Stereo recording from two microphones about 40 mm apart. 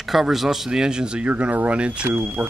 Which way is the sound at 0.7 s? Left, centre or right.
Centre.